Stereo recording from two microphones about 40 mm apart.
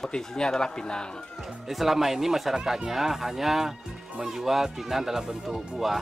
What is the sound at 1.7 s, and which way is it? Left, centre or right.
Speech, centre.